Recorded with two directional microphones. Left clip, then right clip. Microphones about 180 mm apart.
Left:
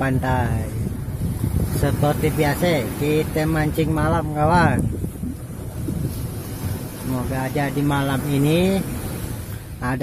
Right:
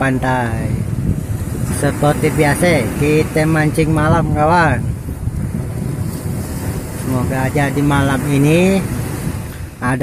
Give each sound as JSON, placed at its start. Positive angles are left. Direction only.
{"t": 0.0, "sound": "speech", "side_deg": 0}
{"t": 1.8, "sound": "speech", "side_deg": 0}
{"t": 7.2, "sound": "speech", "side_deg": 0}